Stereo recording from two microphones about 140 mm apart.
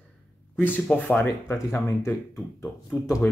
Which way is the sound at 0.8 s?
10° left (ahead or behind).